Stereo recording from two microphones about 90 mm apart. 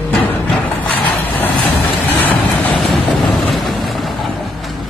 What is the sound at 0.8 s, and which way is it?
Vehicle, 20° left (ahead or behind).